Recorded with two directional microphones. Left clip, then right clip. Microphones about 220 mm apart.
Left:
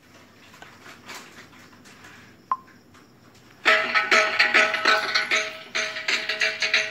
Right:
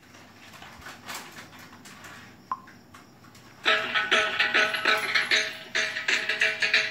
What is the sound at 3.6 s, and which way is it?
Music, 35° left (ahead or behind).